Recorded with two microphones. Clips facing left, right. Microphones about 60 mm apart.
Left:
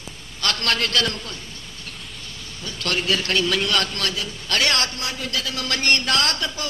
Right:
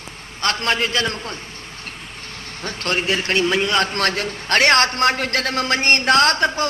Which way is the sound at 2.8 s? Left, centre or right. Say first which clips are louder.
Right 2 dB; right.